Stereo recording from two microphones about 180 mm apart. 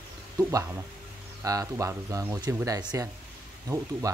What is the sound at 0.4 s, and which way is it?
Speech, 20° right (ahead or behind).